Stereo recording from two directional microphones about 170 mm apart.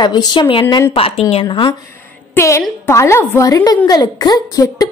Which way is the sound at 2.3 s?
15° left (ahead or behind).